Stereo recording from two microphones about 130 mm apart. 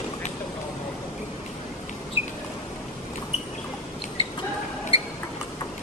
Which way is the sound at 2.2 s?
15° right (ahead or behind).